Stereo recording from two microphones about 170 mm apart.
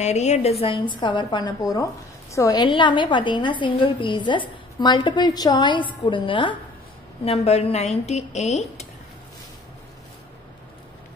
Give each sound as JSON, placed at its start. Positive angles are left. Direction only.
{"t": 0.0, "sound": "a woman's voice", "side_deg": 40}